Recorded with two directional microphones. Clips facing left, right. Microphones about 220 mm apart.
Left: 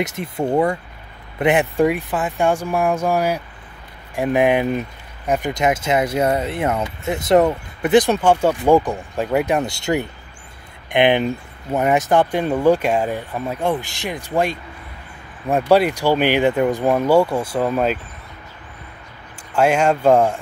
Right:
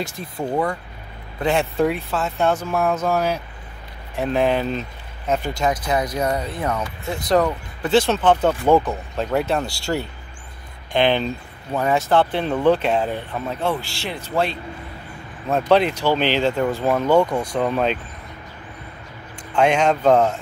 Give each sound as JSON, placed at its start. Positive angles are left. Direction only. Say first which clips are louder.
{"t": 0.0, "sound": "speech", "louder": "left 5 dB", "side_deg": 20}
{"t": 19.5, "sound": "speech", "louder": "left 1 dB", "side_deg": 5}